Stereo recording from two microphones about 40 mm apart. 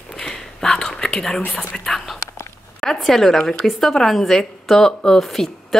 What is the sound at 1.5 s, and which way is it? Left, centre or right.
A woman's voice, centre.